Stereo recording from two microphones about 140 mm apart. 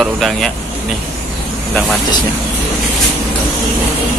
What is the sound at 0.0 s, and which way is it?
Speech, centre (ahead or behind).